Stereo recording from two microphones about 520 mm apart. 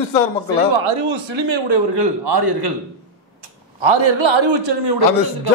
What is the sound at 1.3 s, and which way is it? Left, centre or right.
A man's voice, right.